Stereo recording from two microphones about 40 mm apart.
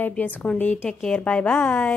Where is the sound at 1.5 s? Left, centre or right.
Left.